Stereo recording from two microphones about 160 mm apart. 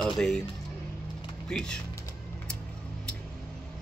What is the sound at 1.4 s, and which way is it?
Speech, 5° left (ahead or behind).